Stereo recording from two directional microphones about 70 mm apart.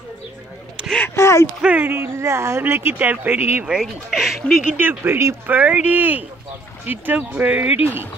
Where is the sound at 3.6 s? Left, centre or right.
Centre.